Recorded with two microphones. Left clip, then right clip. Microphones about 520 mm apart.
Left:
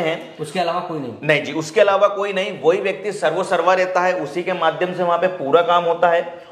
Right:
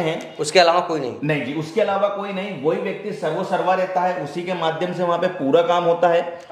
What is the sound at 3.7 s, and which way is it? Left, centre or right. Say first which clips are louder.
A man's voice: left 3 dB; left.